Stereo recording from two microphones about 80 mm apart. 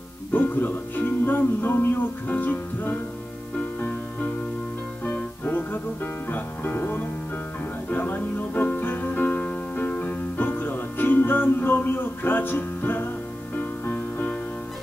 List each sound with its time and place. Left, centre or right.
0.3 s speech: left
5.0 s music: left